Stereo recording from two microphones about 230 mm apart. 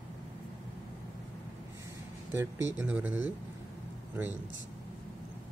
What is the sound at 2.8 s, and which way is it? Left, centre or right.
Speech, centre.